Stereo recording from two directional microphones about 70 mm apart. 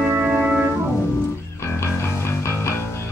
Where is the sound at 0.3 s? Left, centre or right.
Centre.